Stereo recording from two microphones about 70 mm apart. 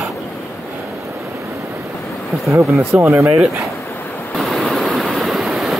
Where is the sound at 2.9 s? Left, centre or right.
Right.